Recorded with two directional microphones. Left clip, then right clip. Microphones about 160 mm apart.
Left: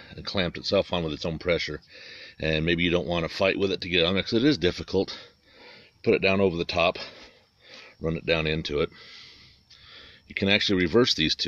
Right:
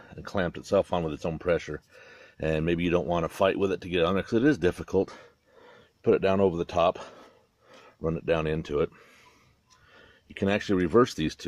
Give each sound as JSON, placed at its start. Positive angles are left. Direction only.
{"t": 0.0, "sound": "a sound", "side_deg": 5}
{"t": 0.7, "sound": "speech", "side_deg": 10}
{"t": 9.9, "sound": "speech", "side_deg": 5}